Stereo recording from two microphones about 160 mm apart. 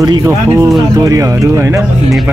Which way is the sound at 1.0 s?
20° right (ahead or behind).